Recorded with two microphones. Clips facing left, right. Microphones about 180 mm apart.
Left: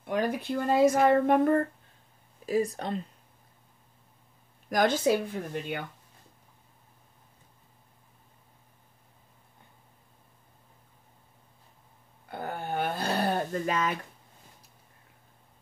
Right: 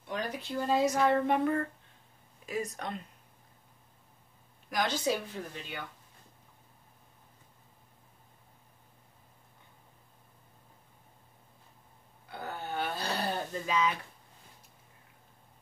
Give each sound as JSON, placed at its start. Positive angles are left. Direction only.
{"t": 0.0, "sound": "speech", "side_deg": 55}
{"t": 2.4, "sound": "speech", "side_deg": 35}
{"t": 4.6, "sound": "speech", "side_deg": 50}
{"t": 12.3, "sound": "a sound", "side_deg": 50}